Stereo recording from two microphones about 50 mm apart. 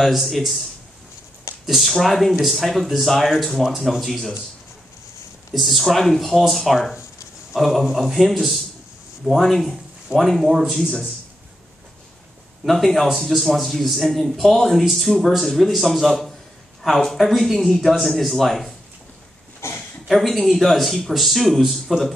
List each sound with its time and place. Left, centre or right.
0.0 s a man's voice: centre
1.7 s a man's voice: centre
5.5 s a man's voice: centre
12.6 s a man's voice: centre
19.6 s a sound: left
20.1 s a man's voice: centre